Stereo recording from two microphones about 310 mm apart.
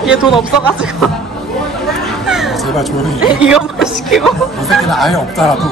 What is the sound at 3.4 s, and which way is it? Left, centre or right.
Speech, centre.